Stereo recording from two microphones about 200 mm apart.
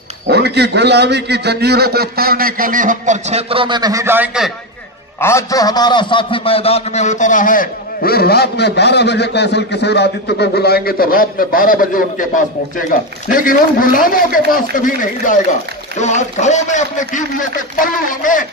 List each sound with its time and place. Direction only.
0.3 s a man's voice: 55° right (ahead or behind); by 4.5 s 5° right (ahead or behind)
5.2 s a man's voice: 15° left (ahead or behind); by 12.3 s 45° left (ahead or behind)
13.3 s a man's voice: 45° left (ahead or behind)